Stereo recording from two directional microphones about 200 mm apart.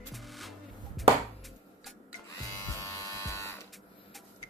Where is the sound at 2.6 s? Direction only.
15° left (ahead or behind).